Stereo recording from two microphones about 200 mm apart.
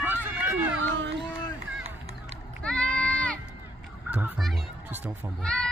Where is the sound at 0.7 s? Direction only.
65° right (ahead or behind).